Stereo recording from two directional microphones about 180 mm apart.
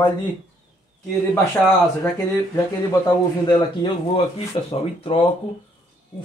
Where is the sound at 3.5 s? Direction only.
30° left (ahead or behind).